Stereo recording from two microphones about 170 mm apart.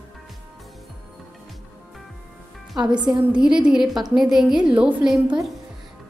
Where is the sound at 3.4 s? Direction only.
5° right (ahead or behind).